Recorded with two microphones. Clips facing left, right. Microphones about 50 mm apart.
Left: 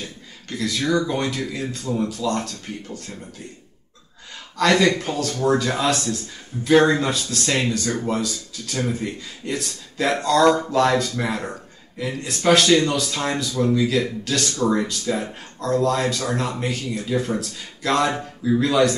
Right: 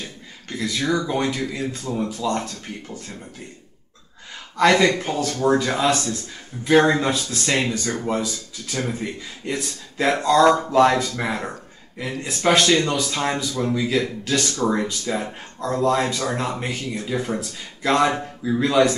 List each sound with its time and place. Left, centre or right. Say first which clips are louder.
0.5 s speech: left 1 dB; centre
4.6 s speech: right 1 dB; centre